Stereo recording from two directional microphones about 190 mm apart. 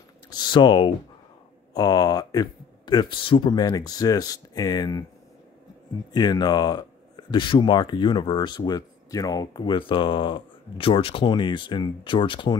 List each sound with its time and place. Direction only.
0.3 s speech: 25° left (ahead or behind)
6.1 s speech: 20° left (ahead or behind)